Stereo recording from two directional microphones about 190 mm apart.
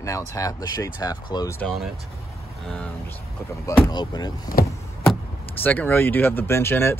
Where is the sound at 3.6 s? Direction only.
20° left (ahead or behind).